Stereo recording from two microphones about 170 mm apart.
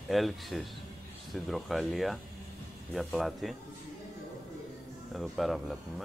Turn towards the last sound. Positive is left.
turn(degrees=0)  # may be behind; listen again after turning